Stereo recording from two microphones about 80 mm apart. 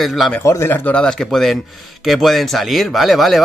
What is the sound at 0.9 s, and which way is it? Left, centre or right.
Speech, centre.